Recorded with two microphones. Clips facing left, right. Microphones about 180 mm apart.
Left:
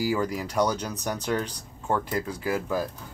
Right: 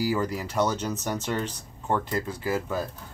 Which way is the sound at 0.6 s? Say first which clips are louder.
Even; 10° left (ahead or behind).